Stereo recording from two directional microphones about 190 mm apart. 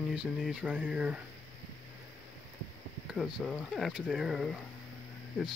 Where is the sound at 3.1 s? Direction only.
Centre (ahead or behind).